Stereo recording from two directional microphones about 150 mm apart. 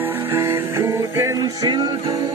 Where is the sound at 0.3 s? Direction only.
15° right (ahead or behind).